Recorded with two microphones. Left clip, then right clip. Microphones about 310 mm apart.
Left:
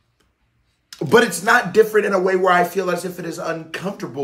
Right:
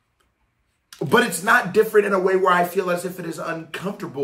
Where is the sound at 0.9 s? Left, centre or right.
Centre.